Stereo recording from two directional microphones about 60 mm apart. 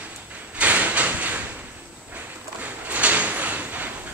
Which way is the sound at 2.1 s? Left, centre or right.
Right.